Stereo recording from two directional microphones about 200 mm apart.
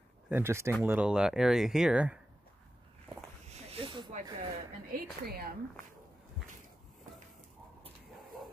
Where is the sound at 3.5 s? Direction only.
30° right (ahead or behind).